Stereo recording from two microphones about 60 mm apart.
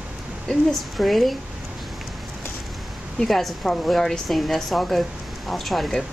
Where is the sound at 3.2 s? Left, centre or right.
Centre.